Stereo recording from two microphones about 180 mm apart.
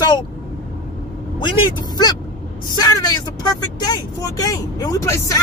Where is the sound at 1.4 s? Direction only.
25° left (ahead or behind).